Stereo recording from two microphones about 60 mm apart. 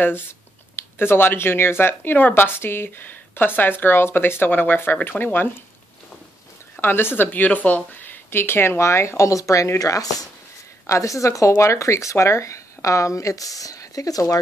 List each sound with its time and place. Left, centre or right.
0.7 s speech: left
6.8 s speech: left